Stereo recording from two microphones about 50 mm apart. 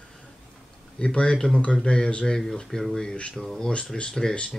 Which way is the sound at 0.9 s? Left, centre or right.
Left.